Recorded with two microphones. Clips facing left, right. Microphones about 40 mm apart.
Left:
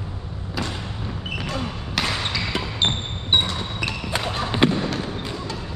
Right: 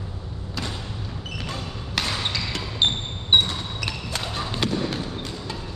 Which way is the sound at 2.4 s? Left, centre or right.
Left.